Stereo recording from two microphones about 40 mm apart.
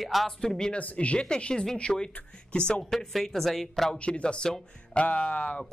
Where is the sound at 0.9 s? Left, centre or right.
Left.